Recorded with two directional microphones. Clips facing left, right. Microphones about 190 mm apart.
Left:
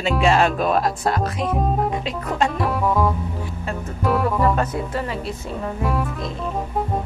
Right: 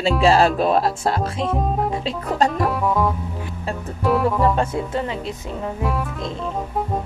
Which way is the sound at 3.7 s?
30° right (ahead or behind).